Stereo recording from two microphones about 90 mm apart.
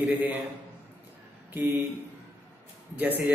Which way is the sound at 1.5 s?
25° right (ahead or behind).